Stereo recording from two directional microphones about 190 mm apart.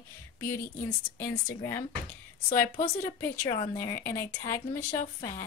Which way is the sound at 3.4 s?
15° left (ahead or behind).